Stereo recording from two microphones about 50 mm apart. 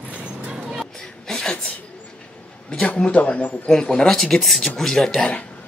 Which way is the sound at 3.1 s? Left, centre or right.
Left.